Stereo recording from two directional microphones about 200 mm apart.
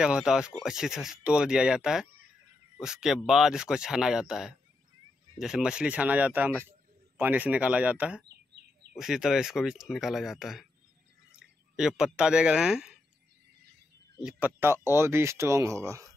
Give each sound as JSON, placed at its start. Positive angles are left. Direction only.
{"t": 0.0, "sound": "speech", "side_deg": -5}
{"t": 11.7, "sound": "speech", "side_deg": -5}
{"t": 14.2, "sound": "speech", "side_deg": -10}